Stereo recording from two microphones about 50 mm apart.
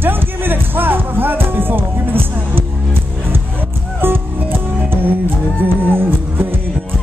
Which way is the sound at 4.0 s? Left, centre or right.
Right.